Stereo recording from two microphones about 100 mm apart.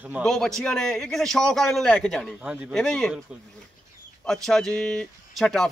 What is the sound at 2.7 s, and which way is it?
Speech, 10° left (ahead or behind).